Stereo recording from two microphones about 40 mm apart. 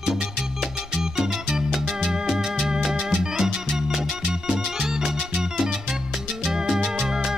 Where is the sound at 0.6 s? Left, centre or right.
Centre.